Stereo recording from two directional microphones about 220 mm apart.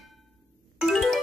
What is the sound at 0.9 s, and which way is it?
Music, centre (ahead or behind).